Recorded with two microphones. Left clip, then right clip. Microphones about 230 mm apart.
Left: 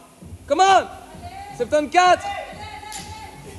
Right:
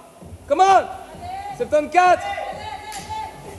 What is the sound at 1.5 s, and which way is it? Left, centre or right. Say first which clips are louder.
Speech: even; centre.